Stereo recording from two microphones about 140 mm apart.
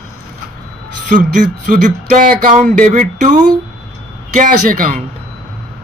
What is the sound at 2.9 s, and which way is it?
A man's voice, 65° right (ahead or behind).